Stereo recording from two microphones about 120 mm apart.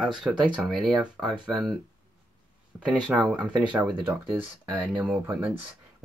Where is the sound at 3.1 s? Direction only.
5° left (ahead or behind).